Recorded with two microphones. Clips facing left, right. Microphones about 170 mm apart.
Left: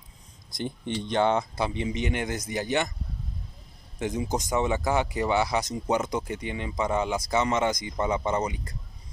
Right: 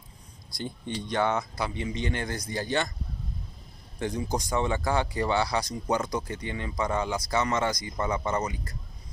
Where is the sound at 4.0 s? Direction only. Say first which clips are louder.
Left 1 dB; 20° left (ahead or behind).